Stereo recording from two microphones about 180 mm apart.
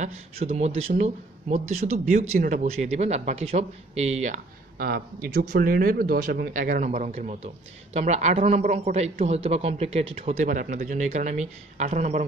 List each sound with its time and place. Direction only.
0.0 s speech: 35° right (ahead or behind)
2.7 s speech: 40° right (ahead or behind)
4.7 s speech: 60° right (ahead or behind); by 12.3 s 40° right (ahead or behind)